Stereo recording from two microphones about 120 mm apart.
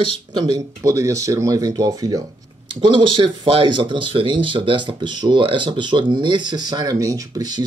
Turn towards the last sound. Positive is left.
turn(degrees=-35)  # may be behind; listen again after turning